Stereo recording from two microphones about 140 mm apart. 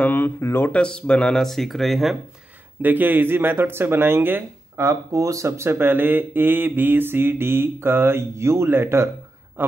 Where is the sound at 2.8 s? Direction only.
15° right (ahead or behind).